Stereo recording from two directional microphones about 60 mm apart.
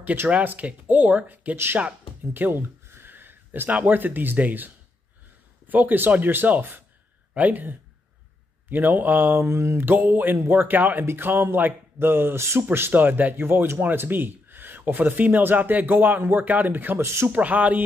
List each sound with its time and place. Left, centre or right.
0.3 s speech: right
2.3 s a sound: right
3.7 s speech: right
9.5 s mantra: right
9.8 s speech: right
17.0 s speech: right
17.3 s speech: right